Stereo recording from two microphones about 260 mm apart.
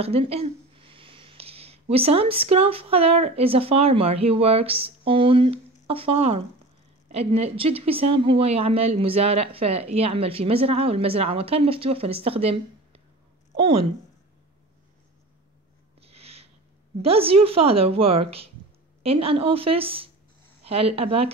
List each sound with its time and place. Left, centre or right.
0.0 s speech: right
16.0 s a sound: right
17.0 s speech: right